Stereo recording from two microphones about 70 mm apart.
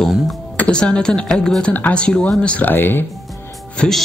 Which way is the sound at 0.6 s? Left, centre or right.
Centre.